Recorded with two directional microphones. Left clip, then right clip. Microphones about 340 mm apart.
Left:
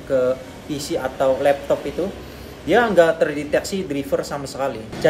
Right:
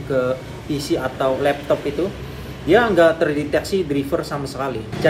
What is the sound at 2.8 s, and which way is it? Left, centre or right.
Speech, centre.